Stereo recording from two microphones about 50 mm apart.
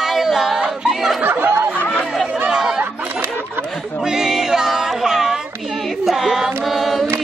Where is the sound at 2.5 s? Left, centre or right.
Centre.